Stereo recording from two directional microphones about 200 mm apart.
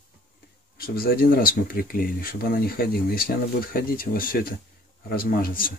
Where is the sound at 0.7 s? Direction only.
50° left (ahead or behind).